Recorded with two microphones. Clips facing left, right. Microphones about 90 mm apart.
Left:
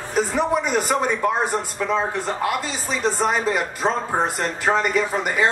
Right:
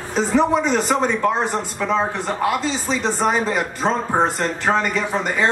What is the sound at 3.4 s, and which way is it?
Speech, 10° left (ahead or behind).